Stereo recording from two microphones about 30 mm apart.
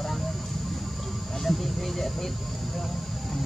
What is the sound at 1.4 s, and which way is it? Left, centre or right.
Speech, centre.